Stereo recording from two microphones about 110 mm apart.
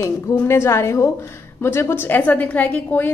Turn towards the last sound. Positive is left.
turn(degrees=15)  # may be behind; listen again after turning